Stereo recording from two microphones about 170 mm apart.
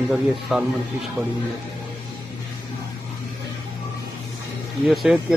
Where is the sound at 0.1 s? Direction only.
5° right (ahead or behind).